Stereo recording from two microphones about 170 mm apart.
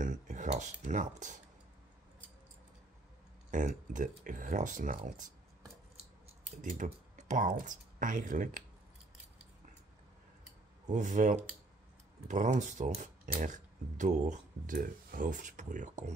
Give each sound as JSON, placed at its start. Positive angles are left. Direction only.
{"t": 0.0, "sound": "speech", "side_deg": -50}
{"t": 3.5, "sound": "speech", "side_deg": -50}
{"t": 6.2, "sound": "speech", "side_deg": -45}
{"t": 10.9, "sound": "speech", "side_deg": -45}